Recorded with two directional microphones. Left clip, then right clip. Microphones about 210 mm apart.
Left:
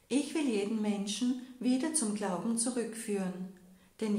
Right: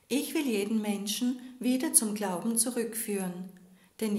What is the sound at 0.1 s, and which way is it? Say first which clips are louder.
A woman's voice: right 2 dB; 35° right (ahead or behind).